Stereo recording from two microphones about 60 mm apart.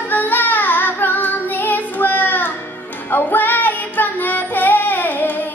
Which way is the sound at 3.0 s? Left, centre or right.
Left.